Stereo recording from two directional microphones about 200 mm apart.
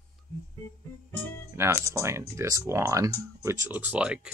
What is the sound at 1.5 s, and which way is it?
Speech, 10° right (ahead or behind).